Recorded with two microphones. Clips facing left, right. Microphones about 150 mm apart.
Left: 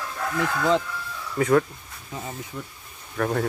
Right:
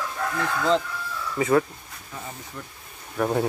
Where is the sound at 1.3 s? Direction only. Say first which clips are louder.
Left 1 dB; 5° right (ahead or behind).